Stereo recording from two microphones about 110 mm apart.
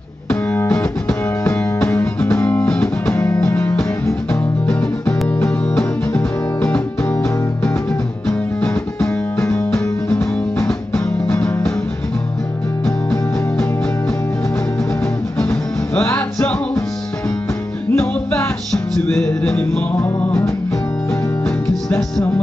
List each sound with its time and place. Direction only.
0.3 s music: 20° left (ahead or behind)
3.2 s music: 20° left (ahead or behind)
4.3 s music: 10° left (ahead or behind)
8.3 s music: 10° left (ahead or behind)
15.3 s music: 15° left (ahead or behind)
17.9 s music: 15° left (ahead or behind)
21.5 s music: 5° left (ahead or behind)